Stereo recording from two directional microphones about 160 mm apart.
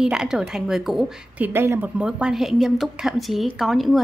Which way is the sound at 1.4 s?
15° right (ahead or behind).